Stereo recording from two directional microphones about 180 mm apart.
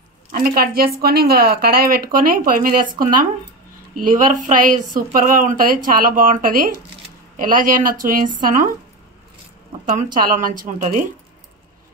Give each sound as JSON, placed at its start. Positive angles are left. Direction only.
{"t": 0.3, "sound": "a woman's voice", "side_deg": -55}
{"t": 9.9, "sound": "speech", "side_deg": -50}